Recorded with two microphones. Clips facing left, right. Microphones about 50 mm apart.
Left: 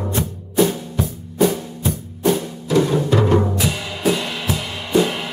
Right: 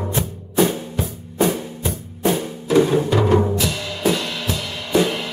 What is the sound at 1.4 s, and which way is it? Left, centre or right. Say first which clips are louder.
Music: left 2 dB; right.